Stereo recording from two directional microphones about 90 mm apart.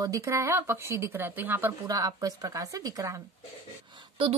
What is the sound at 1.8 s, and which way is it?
Speech, 40° right (ahead or behind).